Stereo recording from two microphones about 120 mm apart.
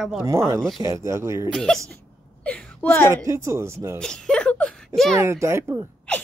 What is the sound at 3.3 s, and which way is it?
Speech, 25° right (ahead or behind).